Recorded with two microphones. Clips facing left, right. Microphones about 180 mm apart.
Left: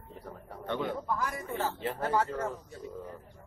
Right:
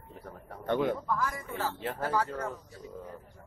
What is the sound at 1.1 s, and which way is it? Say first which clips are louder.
Speech: even; 20° left (ahead or behind).